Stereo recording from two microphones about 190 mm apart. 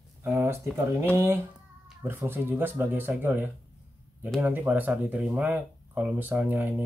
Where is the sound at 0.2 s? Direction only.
10° right (ahead or behind).